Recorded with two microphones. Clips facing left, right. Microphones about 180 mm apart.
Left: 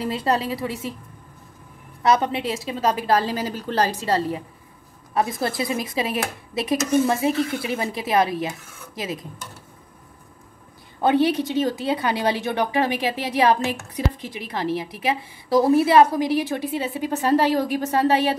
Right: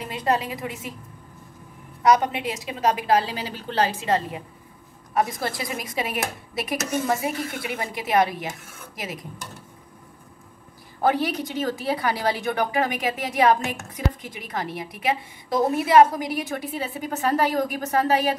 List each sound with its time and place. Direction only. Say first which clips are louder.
0.0 s a woman's voice: left 2 dB; 30° left (ahead or behind)
2.3 s a woman's voice: left 3 dB; 30° left (ahead or behind)
3.3 s a woman's voice: left 6 dB; 45° left (ahead or behind); by 9.2 s 25° left (ahead or behind)
11.0 s a woman's voice: left 4 dB; 25° left (ahead or behind)